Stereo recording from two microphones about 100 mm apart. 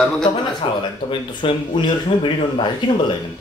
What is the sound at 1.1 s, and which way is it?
Speech, 55° left (ahead or behind).